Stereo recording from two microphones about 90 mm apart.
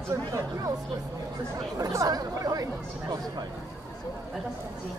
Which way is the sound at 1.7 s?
40° right (ahead or behind).